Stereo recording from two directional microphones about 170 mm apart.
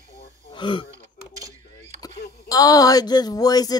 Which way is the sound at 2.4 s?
20° left (ahead or behind).